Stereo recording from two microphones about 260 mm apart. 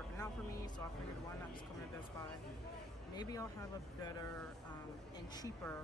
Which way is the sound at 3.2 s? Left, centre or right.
Centre.